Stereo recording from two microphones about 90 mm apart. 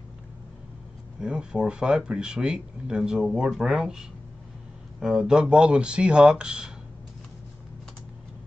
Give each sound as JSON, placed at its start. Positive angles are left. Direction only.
{"t": 1.2, "sound": "speech", "side_deg": -10}